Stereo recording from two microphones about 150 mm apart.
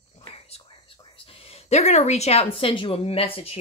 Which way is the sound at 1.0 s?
40° left (ahead or behind).